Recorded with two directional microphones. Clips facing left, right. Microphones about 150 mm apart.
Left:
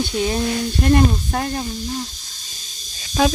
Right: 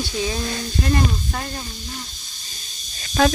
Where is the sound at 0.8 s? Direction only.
55° left (ahead or behind).